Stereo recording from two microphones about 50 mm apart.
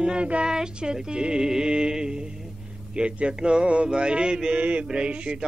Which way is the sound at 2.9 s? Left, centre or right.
Right.